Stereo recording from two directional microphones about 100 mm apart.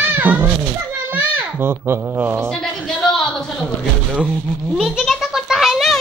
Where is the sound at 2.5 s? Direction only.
5° left (ahead or behind).